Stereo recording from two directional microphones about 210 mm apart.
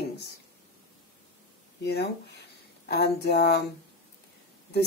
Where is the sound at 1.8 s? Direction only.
50° left (ahead or behind).